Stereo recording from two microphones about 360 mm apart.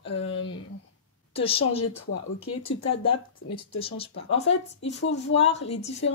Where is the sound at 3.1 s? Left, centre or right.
Centre.